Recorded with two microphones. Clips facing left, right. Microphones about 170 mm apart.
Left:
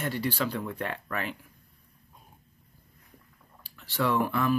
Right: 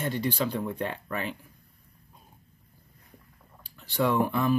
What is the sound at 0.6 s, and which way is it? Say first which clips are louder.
Speech: right 2 dB; 20° right (ahead or behind).